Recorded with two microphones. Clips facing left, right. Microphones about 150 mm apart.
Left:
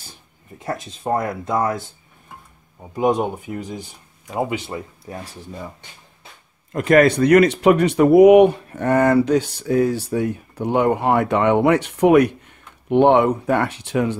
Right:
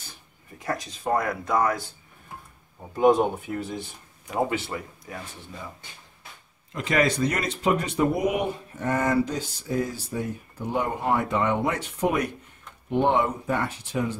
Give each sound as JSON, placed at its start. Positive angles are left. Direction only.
{"t": 0.6, "sound": "speech", "side_deg": 25}
{"t": 2.8, "sound": "speech", "side_deg": 15}
{"t": 5.0, "sound": "speech", "side_deg": 35}
{"t": 6.7, "sound": "speech", "side_deg": 55}